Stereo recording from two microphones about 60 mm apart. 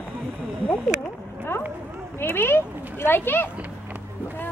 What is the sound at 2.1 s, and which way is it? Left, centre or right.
Speech, left.